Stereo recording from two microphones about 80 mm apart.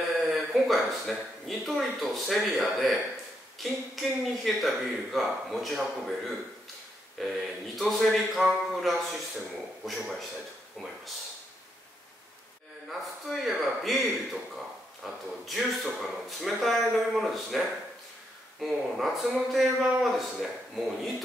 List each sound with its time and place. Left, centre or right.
0.1 s a sound: centre
1.7 s speech: centre
12.8 s speech: centre